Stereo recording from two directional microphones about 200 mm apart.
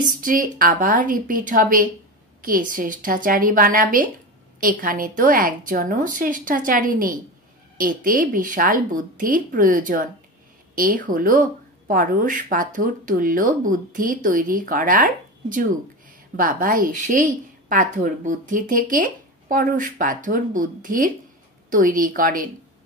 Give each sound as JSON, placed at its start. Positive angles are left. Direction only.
{"t": 0.2, "sound": "a woman's voice", "side_deg": -45}